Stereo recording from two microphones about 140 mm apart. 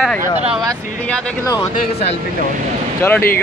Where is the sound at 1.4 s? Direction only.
20° left (ahead or behind).